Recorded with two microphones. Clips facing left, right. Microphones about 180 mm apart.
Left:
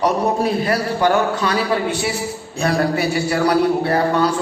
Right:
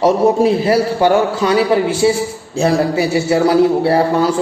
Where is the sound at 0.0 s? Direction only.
25° right (ahead or behind).